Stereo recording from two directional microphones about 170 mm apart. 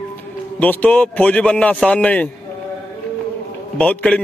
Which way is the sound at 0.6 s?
10° left (ahead or behind).